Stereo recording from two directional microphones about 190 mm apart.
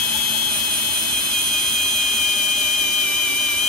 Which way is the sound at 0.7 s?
5° left (ahead or behind).